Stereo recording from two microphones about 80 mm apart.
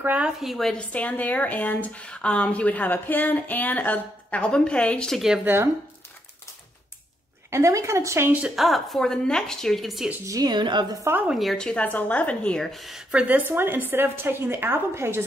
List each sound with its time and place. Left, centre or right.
0.0 s a woman's voice: centre
0.4 s a woman's voice: centre
0.9 s speech: centre
5.4 s a woman's voice: right
7.5 s speech: right
8.3 s a woman's voice: centre
8.5 s a woman's voice: centre
10.2 s a woman's voice: right
10.5 s a woman's voice: right
11.2 s speech: centre
13.1 s a woman's voice: centre
13.5 s a woman's voice: right